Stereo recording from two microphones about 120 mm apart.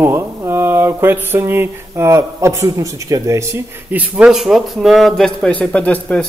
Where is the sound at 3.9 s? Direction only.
10° right (ahead or behind).